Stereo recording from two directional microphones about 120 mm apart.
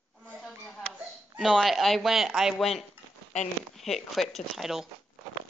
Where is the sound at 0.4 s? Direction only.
Centre (ahead or behind).